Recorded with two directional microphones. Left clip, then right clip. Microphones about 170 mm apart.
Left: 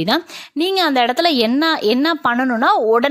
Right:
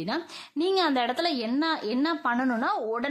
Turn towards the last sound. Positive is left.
turn(degrees=45)  # may be behind; listen again after turning